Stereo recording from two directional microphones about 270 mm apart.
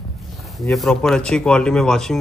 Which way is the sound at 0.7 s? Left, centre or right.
Centre.